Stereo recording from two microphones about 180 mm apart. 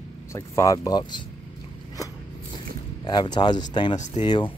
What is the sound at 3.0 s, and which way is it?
Speech, 25° left (ahead or behind).